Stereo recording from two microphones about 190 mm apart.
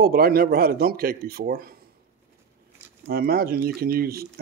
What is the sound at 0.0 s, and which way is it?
Speech, 50° right (ahead or behind).